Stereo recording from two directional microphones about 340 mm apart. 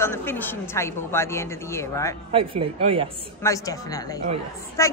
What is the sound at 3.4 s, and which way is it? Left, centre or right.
A woman's voice, centre.